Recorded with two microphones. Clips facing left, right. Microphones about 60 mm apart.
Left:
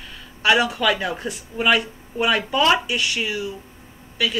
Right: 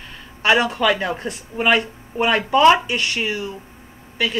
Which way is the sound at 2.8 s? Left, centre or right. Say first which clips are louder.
Right 2 dB; right.